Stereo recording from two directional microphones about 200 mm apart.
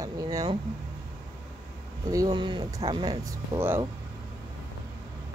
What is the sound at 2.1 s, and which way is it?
Speech, 20° right (ahead or behind).